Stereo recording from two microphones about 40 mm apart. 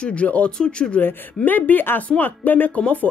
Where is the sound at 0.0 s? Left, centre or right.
Left.